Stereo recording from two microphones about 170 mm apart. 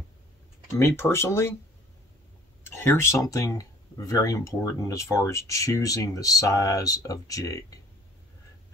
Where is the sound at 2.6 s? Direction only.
10° left (ahead or behind).